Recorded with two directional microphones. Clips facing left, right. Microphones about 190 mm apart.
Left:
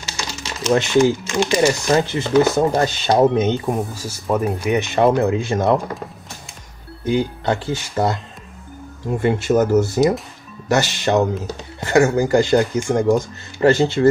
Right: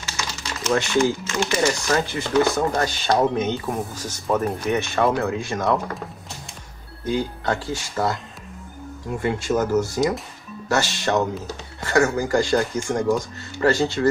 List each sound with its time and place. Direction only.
0.2 s speech: 15° left (ahead or behind)
3.8 s speech: 10° left (ahead or behind); by 5.8 s 25° left (ahead or behind)
7.1 s speech: 20° left (ahead or behind)
9.2 s speech: 25° left (ahead or behind)